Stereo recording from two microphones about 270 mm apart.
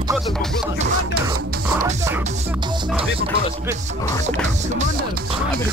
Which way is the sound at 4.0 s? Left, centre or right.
Centre.